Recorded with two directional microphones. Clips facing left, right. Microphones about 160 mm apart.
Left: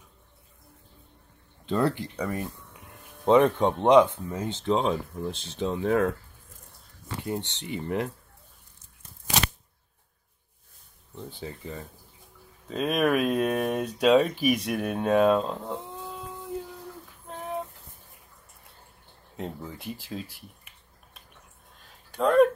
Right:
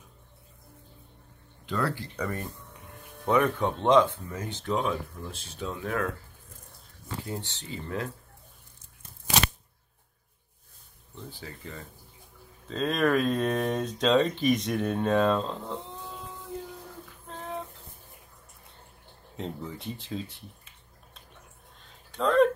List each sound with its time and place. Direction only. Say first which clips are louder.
1.7 s speech: left 5 dB; 25° left (ahead or behind)
2.1 s speech: left 2 dB; 5° left (ahead or behind)
3.3 s speech: left 5 dB; 25° left (ahead or behind)
7.2 s speech: left 8 dB; 20° left (ahead or behind)
11.2 s speech: left 5 dB; 20° left (ahead or behind)
19.3 s speech: even; 5° left (ahead or behind)
22.1 s a sound: left 2 dB; 10° left (ahead or behind)